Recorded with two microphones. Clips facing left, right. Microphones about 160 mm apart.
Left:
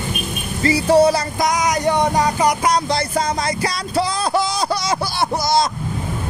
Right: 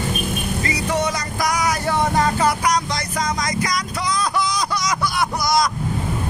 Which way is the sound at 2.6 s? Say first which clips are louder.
Left 3 dB; 30° left (ahead or behind).